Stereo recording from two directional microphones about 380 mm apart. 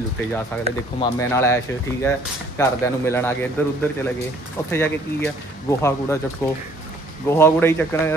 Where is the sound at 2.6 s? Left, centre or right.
Centre.